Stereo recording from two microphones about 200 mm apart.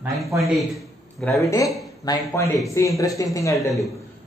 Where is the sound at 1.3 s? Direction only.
15° left (ahead or behind).